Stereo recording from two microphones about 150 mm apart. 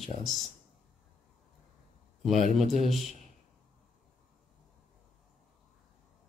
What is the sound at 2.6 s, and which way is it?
Speech, 50° right (ahead or behind).